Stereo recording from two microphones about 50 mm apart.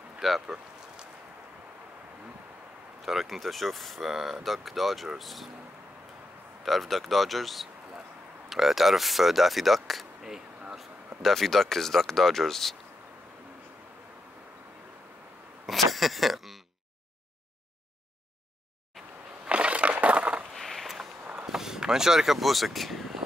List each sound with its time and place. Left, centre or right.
0.2 s speech: centre
3.0 s speech: centre
6.6 s speech: centre
11.2 s speech: centre
15.6 s speech: centre
19.4 s crushing: right
20.5 s a sound: centre
21.4 s speech: centre